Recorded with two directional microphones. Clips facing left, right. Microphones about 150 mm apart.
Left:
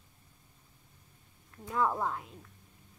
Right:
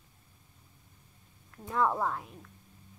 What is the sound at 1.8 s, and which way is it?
Speech, centre (ahead or behind).